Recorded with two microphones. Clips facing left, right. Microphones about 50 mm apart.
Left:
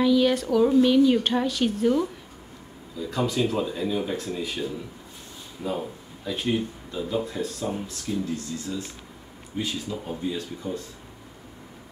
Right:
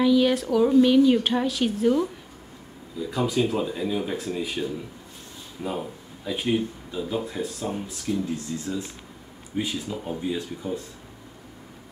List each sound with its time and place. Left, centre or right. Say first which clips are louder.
0.0 s speech: right 1 dB; centre
8.5 s speech: right 2 dB; right